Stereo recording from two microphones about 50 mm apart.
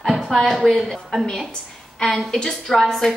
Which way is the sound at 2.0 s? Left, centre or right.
Centre.